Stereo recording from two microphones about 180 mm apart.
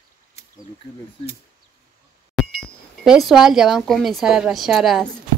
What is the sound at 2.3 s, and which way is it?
Speech, centre (ahead or behind).